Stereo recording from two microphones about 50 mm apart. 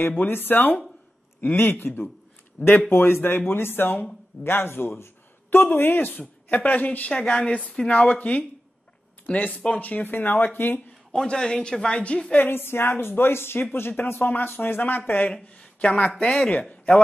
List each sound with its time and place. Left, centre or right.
0.1 s speech: left
5.8 s speech: left
7.2 s a woman's voice: centre
10.1 s speech: left
11.1 s speech: centre
12.4 s speech: left
15.4 s a sound: left
16.2 s speech: centre
16.4 s a woman's voice: left